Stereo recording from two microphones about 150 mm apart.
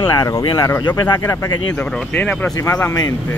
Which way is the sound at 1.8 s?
5° left (ahead or behind).